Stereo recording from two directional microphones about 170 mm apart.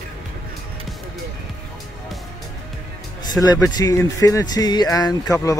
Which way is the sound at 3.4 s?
10° left (ahead or behind).